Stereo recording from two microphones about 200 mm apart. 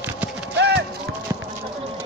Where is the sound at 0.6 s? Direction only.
60° right (ahead or behind).